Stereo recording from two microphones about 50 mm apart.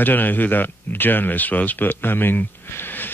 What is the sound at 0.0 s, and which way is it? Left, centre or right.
Speech, left.